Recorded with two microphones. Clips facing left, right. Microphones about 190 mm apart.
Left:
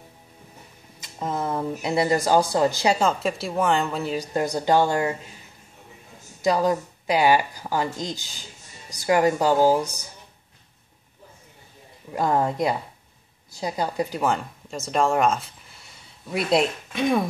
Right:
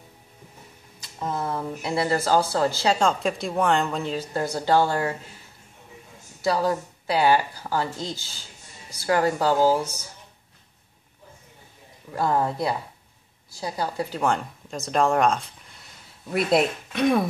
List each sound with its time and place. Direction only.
1.0 s speech: 20° left (ahead or behind)
6.4 s speech: 15° left (ahead or behind)
12.1 s a woman's voice: 15° left (ahead or behind)
14.2 s speech: centre (ahead or behind)